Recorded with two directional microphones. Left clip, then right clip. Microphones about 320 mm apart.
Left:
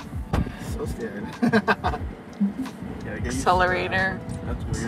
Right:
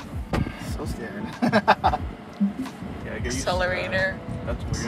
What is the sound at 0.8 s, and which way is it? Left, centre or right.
Speech, centre.